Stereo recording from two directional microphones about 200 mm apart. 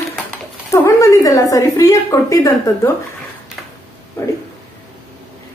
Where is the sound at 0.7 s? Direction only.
15° left (ahead or behind).